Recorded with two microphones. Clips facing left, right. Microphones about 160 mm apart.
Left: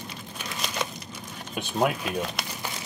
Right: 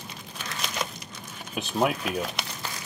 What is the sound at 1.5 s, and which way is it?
Speech, centre (ahead or behind).